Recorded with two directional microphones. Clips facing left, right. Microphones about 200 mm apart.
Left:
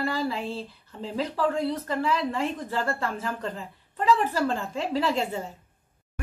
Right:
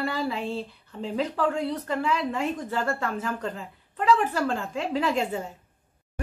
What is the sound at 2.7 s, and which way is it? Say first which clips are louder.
A woman's voice: right 1 dB; 5° left (ahead or behind).